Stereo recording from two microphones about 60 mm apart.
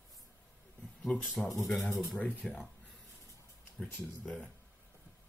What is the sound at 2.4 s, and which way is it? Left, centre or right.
Speech, centre.